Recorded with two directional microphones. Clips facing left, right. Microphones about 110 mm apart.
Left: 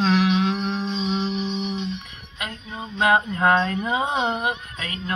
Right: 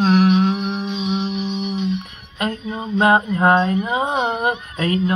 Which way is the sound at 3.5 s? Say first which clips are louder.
Right 4 dB; 15° right (ahead or behind).